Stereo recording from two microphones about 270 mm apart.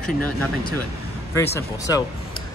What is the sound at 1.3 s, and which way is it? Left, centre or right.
Speech, centre.